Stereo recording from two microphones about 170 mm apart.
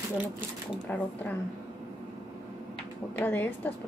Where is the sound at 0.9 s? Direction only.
10° left (ahead or behind).